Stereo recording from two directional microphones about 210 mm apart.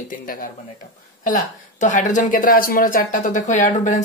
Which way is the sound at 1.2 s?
35° left (ahead or behind).